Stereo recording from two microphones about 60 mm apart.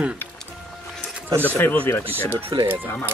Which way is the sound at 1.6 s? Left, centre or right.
Left.